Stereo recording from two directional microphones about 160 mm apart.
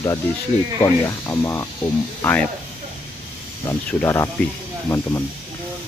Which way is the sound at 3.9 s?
15° left (ahead or behind).